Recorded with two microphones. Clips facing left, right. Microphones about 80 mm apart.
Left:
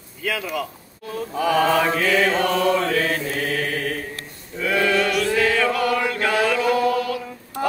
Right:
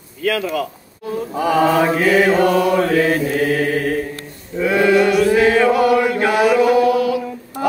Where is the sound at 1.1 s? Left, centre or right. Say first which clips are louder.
Right 3 dB; right.